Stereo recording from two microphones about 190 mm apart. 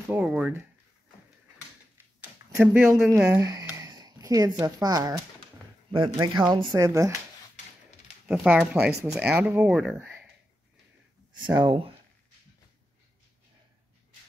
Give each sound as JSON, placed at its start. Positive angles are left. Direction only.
{"t": 0.1, "sound": "speech", "side_deg": -5}
{"t": 2.5, "sound": "speech", "side_deg": -10}
{"t": 8.3, "sound": "speech", "side_deg": -5}
{"t": 11.3, "sound": "speech", "side_deg": -25}